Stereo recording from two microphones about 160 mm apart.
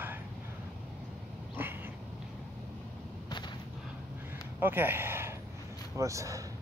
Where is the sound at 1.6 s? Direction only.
10° right (ahead or behind).